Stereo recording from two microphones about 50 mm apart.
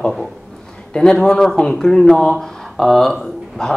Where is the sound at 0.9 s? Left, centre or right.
Centre.